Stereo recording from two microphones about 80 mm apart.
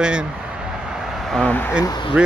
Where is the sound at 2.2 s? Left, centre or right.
Centre.